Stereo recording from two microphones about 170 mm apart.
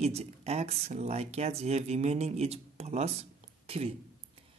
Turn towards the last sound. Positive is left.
turn(degrees=-35)  # may be behind; listen again after turning